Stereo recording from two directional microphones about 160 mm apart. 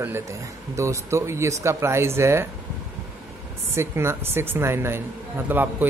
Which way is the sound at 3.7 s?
15° right (ahead or behind).